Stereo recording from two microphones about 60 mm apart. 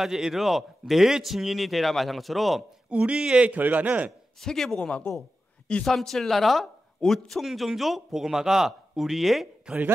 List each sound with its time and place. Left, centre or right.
0.0 s a man's voice: centre
2.9 s a man's voice: centre
4.4 s a man's voice: centre
4.7 s speech: centre
5.9 s a man's voice: centre